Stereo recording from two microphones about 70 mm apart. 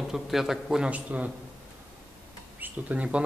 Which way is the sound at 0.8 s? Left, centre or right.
Centre.